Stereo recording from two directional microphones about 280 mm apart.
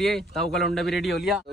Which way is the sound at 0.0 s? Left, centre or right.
Centre.